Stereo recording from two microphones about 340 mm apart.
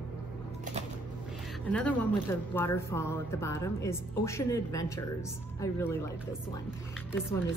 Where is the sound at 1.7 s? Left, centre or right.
Centre.